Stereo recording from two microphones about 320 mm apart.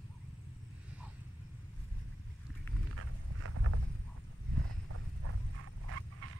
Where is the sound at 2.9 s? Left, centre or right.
Right.